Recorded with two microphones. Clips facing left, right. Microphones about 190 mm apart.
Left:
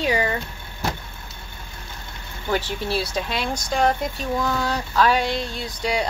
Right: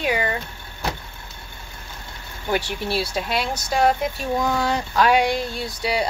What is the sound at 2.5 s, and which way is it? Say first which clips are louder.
Speech: even; 10° right (ahead or behind).